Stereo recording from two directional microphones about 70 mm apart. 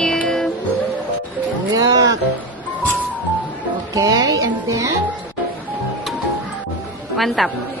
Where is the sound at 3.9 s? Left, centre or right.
Right.